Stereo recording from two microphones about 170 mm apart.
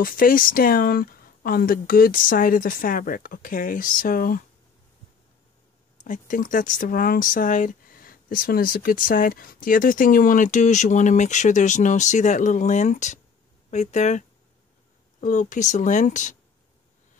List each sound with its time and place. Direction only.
0.0 s speech: 55° left (ahead or behind)
6.0 s speech: 50° left (ahead or behind)